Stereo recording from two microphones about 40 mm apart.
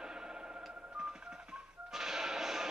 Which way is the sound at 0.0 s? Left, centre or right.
Centre.